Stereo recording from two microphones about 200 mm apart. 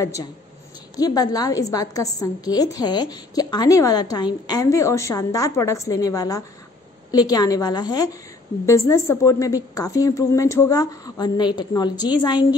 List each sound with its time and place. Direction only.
0.0 s a woman's voice: 15° left (ahead or behind)